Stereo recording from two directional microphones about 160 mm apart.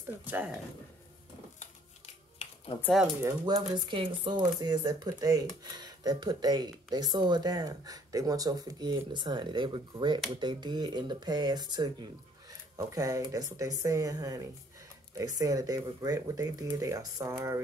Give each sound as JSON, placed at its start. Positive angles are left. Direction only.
{"t": 0.0, "sound": "speech", "side_deg": -10}
{"t": 2.3, "sound": "a sound", "side_deg": 35}
{"t": 3.2, "sound": "speech", "side_deg": -20}